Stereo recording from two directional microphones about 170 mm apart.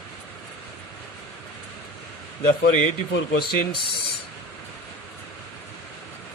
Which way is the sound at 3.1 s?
65° left (ahead or behind).